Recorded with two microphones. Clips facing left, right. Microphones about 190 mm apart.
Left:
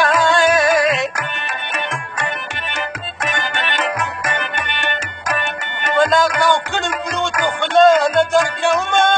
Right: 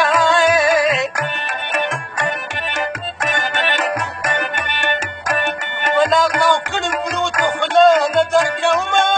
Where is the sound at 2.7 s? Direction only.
45° right (ahead or behind).